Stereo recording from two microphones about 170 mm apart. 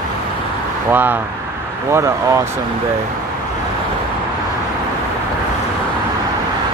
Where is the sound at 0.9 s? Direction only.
10° right (ahead or behind).